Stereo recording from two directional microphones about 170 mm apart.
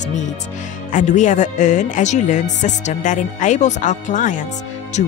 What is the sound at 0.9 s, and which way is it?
Speech, 45° left (ahead or behind).